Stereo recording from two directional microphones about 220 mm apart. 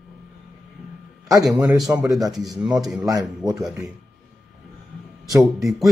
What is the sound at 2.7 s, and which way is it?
Speech, centre (ahead or behind).